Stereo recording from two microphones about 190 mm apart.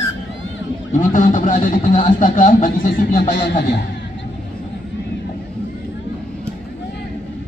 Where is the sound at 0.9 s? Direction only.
40° left (ahead or behind).